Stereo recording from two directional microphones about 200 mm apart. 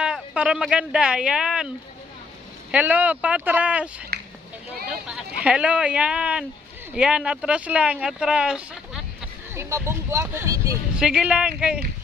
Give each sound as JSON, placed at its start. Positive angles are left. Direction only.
{"t": 0.0, "sound": "speech", "side_deg": -5}
{"t": 2.7, "sound": "speech", "side_deg": -10}
{"t": 4.1, "sound": "a sound", "side_deg": -50}
{"t": 5.0, "sound": "speech", "side_deg": -5}
{"t": 11.0, "sound": "speech", "side_deg": -5}